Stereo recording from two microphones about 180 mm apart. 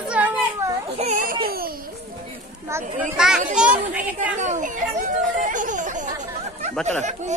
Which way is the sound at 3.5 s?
5° right (ahead or behind).